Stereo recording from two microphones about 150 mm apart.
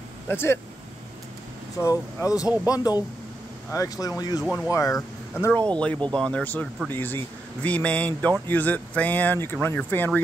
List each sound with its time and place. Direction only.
0.3 s speech: 15° left (ahead or behind)
1.8 s speech: 20° left (ahead or behind)
2.4 s speech: 10° right (ahead or behind)
2.7 s speech: 25° left (ahead or behind)
4.4 s speech: 5° right (ahead or behind)
4.7 s speech: 20° left (ahead or behind)